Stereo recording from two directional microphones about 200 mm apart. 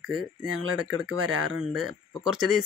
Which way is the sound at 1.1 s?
90° right.